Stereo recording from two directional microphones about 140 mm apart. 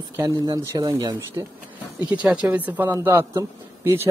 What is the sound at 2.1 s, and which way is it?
Speech, 10° right (ahead or behind).